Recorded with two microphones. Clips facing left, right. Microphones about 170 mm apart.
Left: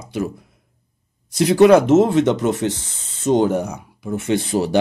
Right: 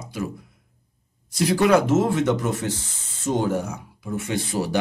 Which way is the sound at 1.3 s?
25° left (ahead or behind).